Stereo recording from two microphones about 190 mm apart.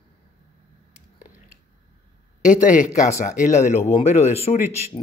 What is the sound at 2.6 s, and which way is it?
A man's voice, 40° left (ahead or behind).